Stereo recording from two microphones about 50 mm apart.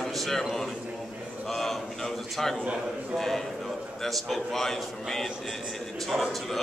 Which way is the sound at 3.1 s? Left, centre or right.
Centre.